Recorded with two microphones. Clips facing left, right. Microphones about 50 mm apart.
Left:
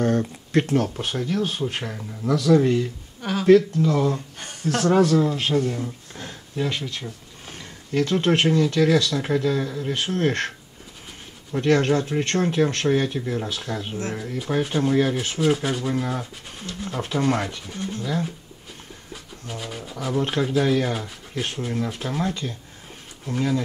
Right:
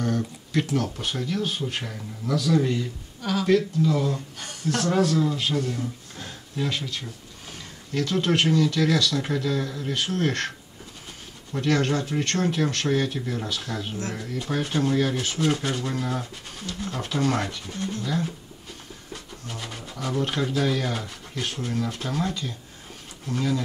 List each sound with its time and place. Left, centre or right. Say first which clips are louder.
0.5 s speech: left 4 dB; left
1.1 s speech: left 3 dB; centre; by 5.4 s left
5.7 s a sound: left 2 dB; centre
7.5 s speech: left 5 dB; left
9.9 s speech: left 2 dB; left
11.5 s speech: left 4 dB; centre
19.4 s speech: left 5 dB; centre